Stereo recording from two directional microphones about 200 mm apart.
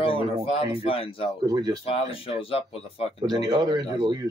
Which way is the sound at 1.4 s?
20° right (ahead or behind).